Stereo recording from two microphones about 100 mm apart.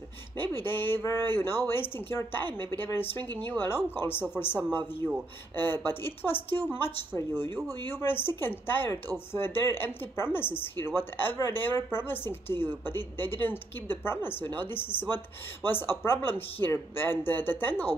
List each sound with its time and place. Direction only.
0.4 s speech: 20° left (ahead or behind)
7.9 s speech: 25° left (ahead or behind)